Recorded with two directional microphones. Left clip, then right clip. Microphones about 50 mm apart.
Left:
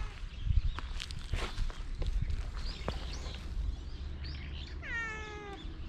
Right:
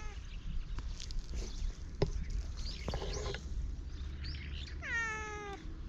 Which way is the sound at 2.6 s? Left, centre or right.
Right.